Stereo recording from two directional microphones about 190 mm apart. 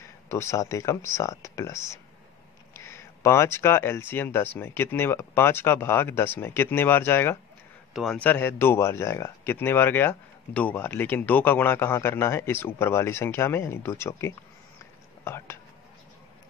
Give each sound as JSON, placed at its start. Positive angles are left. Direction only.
{"t": 0.3, "sound": "speech", "side_deg": 15}